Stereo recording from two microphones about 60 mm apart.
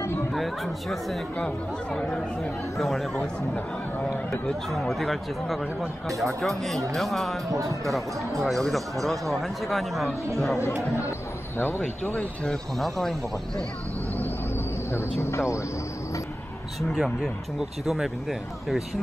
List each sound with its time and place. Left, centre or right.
0.3 s speech: centre
2.8 s speech: centre
3.2 s speech: left
4.7 s speech: centre
8.6 s speech: centre
12.7 s speech: centre
14.9 s speech: left
16.9 s speech: centre